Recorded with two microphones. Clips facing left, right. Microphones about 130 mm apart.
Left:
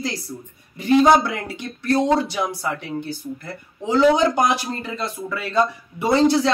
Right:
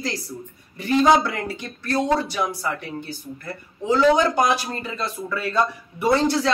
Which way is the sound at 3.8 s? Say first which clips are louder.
Left 1 dB; 20° left (ahead or behind).